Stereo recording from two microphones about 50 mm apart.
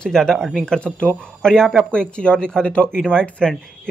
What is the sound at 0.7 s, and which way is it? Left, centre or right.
Speech, left.